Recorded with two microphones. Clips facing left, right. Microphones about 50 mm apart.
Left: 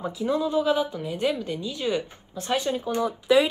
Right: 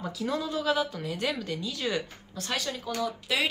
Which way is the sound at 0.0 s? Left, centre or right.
Left.